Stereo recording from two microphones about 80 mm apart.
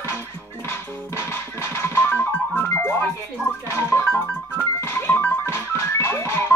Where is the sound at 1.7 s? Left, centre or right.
Left.